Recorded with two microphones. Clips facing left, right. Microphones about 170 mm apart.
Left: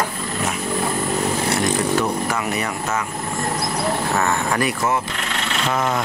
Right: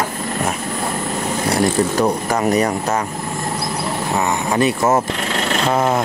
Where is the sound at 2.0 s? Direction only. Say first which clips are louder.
Right 5 dB; 40° right (ahead or behind).